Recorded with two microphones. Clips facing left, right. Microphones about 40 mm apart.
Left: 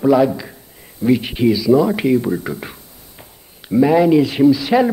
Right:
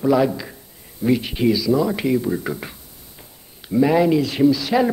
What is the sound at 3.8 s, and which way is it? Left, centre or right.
Speech, centre.